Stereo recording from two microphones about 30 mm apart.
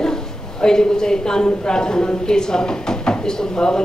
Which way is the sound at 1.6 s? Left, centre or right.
Left.